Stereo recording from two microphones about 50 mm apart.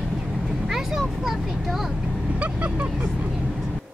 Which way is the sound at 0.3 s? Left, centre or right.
Centre.